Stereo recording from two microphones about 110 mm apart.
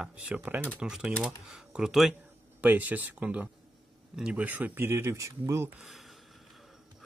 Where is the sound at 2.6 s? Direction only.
15° right (ahead or behind).